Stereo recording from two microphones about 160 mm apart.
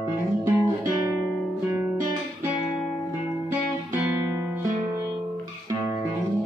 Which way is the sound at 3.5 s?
15° right (ahead or behind).